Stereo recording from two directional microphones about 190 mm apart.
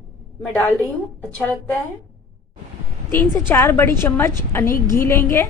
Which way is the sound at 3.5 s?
10° left (ahead or behind).